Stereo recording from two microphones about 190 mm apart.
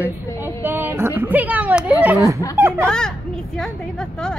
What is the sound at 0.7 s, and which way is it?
Speech, 10° right (ahead or behind).